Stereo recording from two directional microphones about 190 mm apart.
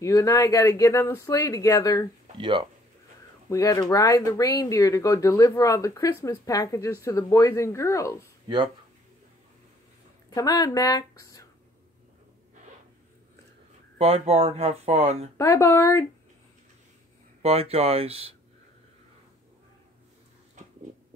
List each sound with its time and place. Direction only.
0.0 s speech: 15° left (ahead or behind)
2.3 s speech: 25° right (ahead or behind)
3.4 s speech: 20° left (ahead or behind)
10.3 s speech: 20° left (ahead or behind)
13.9 s speech: 35° right (ahead or behind)
15.3 s speech: 15° left (ahead or behind)
17.4 s speech: 35° right (ahead or behind)